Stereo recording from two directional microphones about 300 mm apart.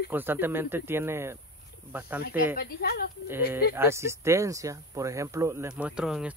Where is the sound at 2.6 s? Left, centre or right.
Left.